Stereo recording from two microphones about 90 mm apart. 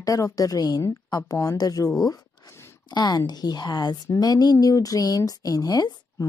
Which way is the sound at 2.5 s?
30° left (ahead or behind).